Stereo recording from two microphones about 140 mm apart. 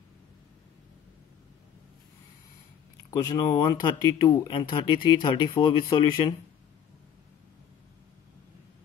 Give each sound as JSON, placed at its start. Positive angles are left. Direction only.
{"t": 3.1, "sound": "speech", "side_deg": 25}